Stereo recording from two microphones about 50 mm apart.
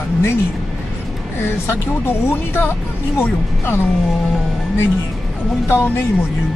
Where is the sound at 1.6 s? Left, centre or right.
Left.